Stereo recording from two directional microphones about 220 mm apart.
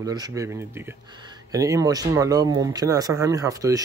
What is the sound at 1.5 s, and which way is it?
Speech, 15° right (ahead or behind).